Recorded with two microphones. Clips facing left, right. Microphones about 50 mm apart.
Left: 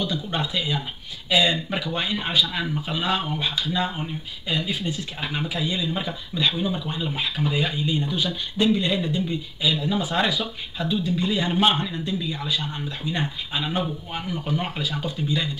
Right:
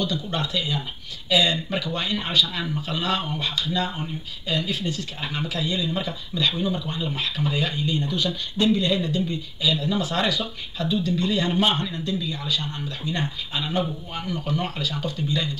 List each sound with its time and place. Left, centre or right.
0.0 s speech: centre